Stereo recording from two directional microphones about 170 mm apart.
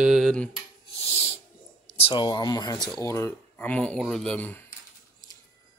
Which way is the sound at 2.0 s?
30° left (ahead or behind).